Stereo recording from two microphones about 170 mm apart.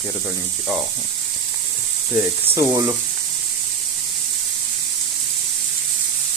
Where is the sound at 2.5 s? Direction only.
20° right (ahead or behind).